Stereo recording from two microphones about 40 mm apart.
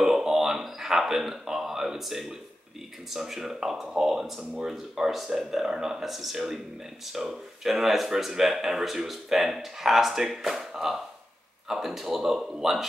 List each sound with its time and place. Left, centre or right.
0.0 s a sound: centre
3.1 s speech: centre
12.2 s speech: centre